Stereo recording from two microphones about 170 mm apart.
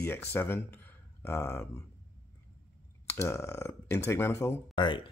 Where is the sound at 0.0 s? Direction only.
15° left (ahead or behind).